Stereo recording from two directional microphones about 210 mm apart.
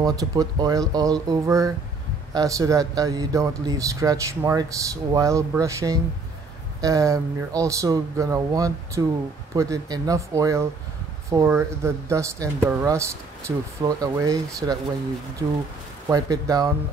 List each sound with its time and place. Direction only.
0.0 s speech: 15° right (ahead or behind)
16.1 s speech: 15° right (ahead or behind)